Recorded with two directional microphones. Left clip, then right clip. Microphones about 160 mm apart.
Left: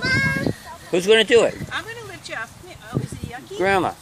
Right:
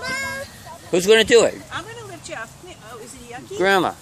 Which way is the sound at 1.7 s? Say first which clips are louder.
Left 2 dB; 10° left (ahead or behind).